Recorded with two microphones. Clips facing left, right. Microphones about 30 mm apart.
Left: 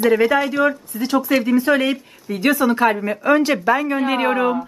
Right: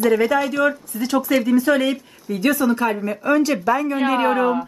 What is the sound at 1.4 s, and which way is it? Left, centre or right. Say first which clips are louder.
Speech: even; left.